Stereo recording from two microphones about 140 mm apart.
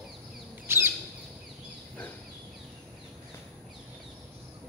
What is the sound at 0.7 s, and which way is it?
Bird, 15° right (ahead or behind).